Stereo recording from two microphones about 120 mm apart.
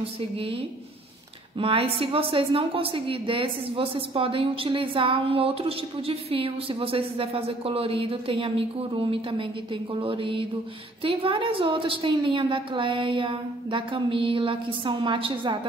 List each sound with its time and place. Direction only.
0.0 s a woman's voice: 50° right (ahead or behind)